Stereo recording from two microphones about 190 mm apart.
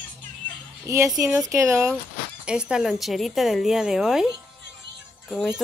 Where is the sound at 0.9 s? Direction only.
15° right (ahead or behind).